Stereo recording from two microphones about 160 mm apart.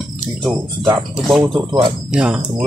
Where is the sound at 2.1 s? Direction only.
5° right (ahead or behind).